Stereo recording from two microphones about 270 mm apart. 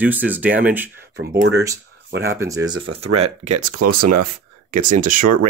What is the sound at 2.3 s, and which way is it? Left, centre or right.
Speech, centre.